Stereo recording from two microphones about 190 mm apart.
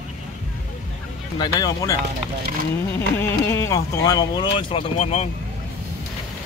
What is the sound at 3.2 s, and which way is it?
Speech, 15° left (ahead or behind).